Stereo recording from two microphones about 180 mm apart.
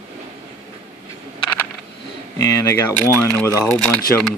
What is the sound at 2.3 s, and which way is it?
Speech, 20° left (ahead or behind).